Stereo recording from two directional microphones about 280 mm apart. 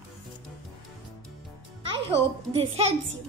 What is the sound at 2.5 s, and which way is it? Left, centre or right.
Speech, centre.